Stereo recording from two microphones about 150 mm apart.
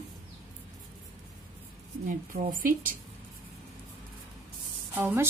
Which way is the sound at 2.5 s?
65° right (ahead or behind).